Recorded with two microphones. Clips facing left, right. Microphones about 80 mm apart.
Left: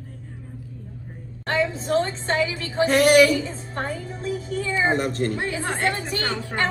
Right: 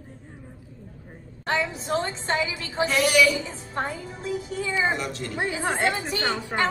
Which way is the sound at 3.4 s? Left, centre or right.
Centre.